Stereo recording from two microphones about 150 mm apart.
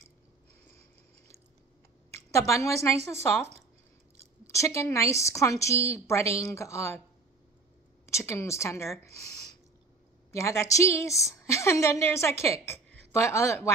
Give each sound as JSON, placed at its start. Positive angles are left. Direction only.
{"t": 2.3, "sound": "a woman's voice", "side_deg": 20}
{"t": 4.5, "sound": "a woman's voice", "side_deg": 20}
{"t": 6.2, "sound": "speech", "side_deg": -45}
{"t": 6.5, "sound": "a woman's voice", "side_deg": 20}
{"t": 8.1, "sound": "a woman's voice", "side_deg": 20}